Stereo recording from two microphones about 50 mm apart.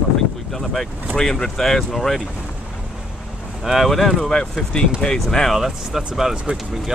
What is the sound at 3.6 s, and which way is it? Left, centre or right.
Speech, centre.